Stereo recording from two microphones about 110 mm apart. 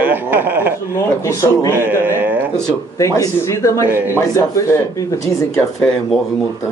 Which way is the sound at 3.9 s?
20° right (ahead or behind).